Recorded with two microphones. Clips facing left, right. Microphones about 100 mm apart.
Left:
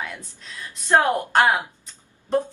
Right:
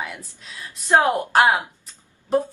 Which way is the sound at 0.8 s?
15° right (ahead or behind).